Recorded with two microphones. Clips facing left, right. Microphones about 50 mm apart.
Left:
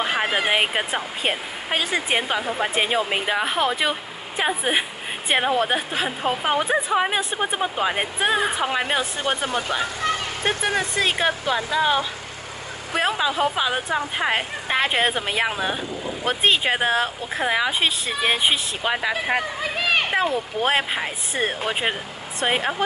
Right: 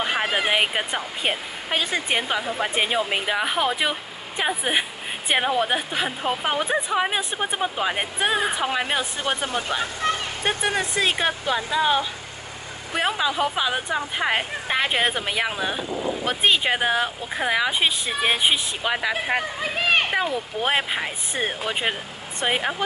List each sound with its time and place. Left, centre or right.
0.0 s speech: centre
20.1 s a sound: centre
20.6 s speech: centre